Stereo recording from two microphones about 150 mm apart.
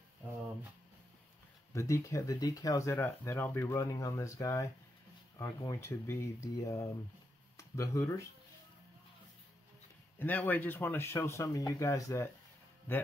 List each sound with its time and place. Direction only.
1.7 s speech: 20° left (ahead or behind)
10.1 s speech: 15° left (ahead or behind)